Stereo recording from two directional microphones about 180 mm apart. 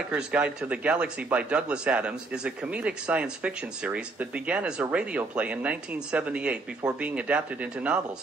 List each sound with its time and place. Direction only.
0.1 s speech: 5° right (ahead or behind)